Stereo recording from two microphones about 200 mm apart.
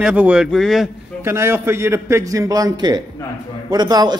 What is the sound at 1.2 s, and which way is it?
A man's voice, 10° right (ahead or behind).